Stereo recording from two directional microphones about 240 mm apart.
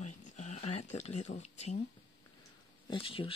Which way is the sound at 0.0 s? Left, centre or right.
Left.